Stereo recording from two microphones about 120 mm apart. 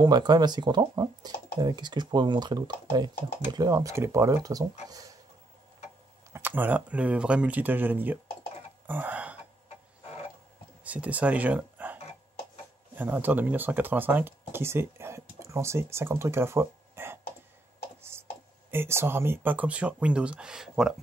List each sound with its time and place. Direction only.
0.0 s speech: 35° right (ahead or behind)
6.3 s speech: 15° right (ahead or behind)
8.8 s throat clearing: 15° right (ahead or behind)
10.8 s speech: 10° right (ahead or behind)
18.7 s speech: 20° right (ahead or behind); by 20.9 s 5° right (ahead or behind)